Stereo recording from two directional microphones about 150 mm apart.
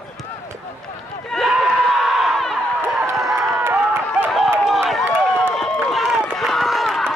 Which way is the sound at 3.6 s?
15° right (ahead or behind).